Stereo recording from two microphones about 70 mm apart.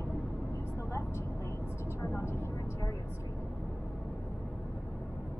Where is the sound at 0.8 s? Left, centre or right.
Left.